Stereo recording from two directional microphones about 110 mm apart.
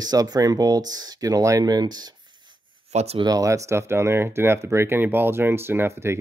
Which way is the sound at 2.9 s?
75° right (ahead or behind).